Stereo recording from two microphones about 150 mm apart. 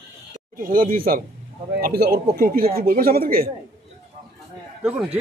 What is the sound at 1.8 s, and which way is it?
Speech, 90° right.